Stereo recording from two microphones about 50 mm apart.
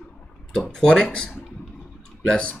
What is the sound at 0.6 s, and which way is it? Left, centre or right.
Speech, centre.